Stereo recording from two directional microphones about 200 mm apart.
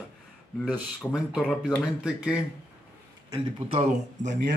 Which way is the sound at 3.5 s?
30° right (ahead or behind).